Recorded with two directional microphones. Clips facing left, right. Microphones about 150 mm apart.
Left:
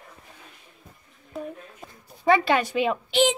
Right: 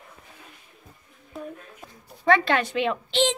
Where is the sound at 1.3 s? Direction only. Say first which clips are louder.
Left 2 dB; centre (ahead or behind).